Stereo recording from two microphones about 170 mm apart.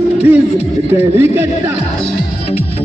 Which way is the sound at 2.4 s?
35° left (ahead or behind).